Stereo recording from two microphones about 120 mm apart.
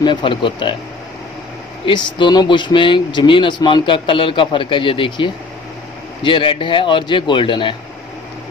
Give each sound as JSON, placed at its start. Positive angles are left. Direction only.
{"t": 0.0, "sound": "speech", "side_deg": 40}
{"t": 1.9, "sound": "speech", "side_deg": 40}